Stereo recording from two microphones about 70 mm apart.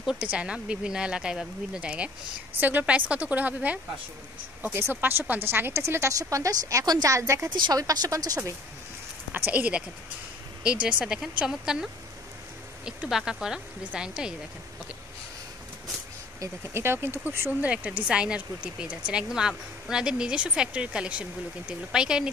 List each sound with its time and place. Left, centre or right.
0.2 s a woman's voice: centre
4.7 s a woman's voice: right
6.1 s a woman's voice: right
7.2 s a woman's voice: right
7.4 s speech: right
9.3 s speech: right
16.7 s a woman's voice: right
17.5 s speech: right